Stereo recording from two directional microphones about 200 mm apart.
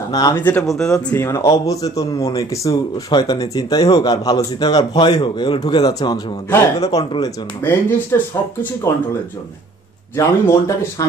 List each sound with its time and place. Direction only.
0.1 s speech: 15° left (ahead or behind)
1.1 s speech: 15° left (ahead or behind)
10.1 s speech: 15° left (ahead or behind)